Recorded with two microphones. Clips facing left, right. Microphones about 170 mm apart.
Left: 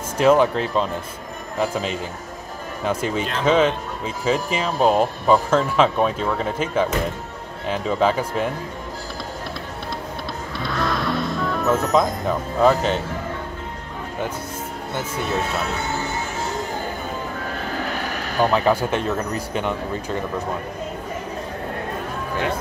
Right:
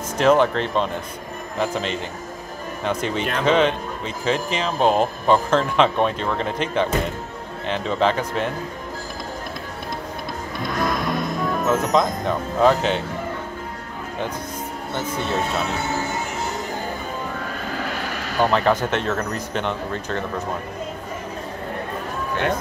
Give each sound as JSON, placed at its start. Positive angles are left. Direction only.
{"t": 0.2, "sound": "speech", "side_deg": 5}
{"t": 10.8, "sound": "music", "side_deg": -15}
{"t": 11.9, "sound": "speech", "side_deg": 5}
{"t": 18.4, "sound": "speech", "side_deg": 10}